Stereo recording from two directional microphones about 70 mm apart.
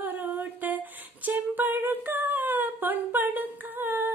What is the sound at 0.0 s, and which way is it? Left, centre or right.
Humming, right.